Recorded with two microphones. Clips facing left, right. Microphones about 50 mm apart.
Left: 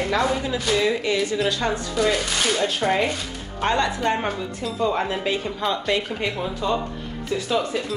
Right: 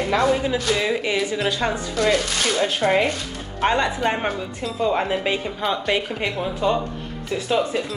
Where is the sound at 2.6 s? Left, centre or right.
Centre.